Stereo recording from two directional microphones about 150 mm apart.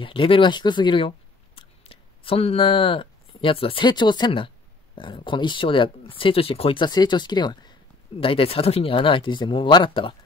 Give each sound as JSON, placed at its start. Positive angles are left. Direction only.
{"t": 0.0, "sound": "speech", "side_deg": 35}